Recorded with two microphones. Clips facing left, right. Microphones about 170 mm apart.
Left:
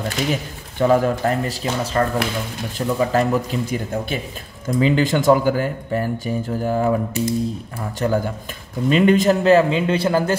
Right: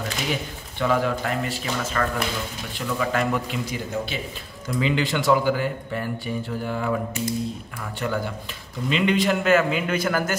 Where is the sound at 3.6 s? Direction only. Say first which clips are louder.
Left 4 dB; 50° left (ahead or behind).